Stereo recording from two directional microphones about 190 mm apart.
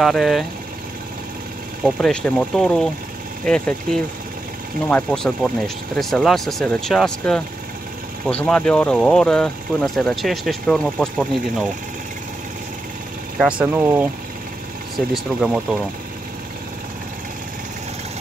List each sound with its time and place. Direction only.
0.0 s speech: centre (ahead or behind)
1.9 s speech: centre (ahead or behind)
13.4 s speech: 5° right (ahead or behind)